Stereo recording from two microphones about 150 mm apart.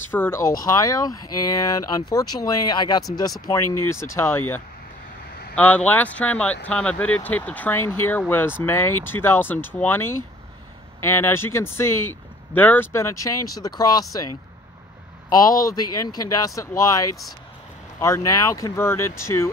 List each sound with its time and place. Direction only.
0.1 s speech: 15° left (ahead or behind)
15.2 s speech: 25° left (ahead or behind)